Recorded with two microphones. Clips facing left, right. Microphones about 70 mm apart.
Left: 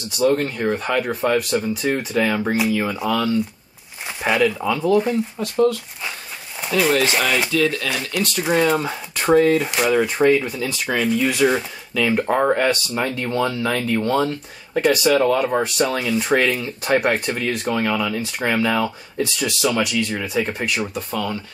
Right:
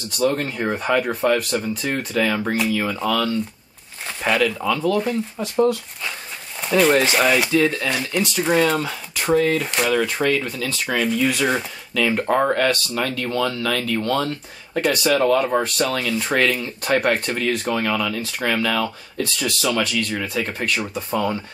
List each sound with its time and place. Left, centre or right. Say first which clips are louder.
0.2 s speech: left 3 dB; centre
5.4 s speech: left 1 dB; centre
6.6 s a sound: right 2 dB; centre
7.2 s speech: right 2 dB; centre
7.5 s speech: right 1 dB; right
7.9 s speech: right 1 dB; centre
8.8 s speech: left 3 dB; left
9.9 s speech: left 6 dB; centre
12.6 s speech: left 1 dB; left
14.7 s speech: left 3 dB; centre
15.8 s speech: left 2 dB; centre
21.1 s speech: right 6 dB; right